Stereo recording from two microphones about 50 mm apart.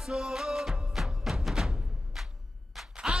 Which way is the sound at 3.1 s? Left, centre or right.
Right.